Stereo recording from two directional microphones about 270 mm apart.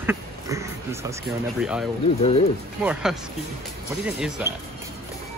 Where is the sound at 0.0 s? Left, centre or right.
Centre.